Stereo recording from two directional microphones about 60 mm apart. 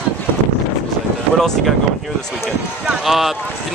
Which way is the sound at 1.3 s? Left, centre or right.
Centre.